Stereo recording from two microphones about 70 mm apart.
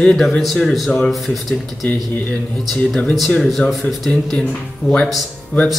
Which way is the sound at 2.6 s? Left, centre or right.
Centre.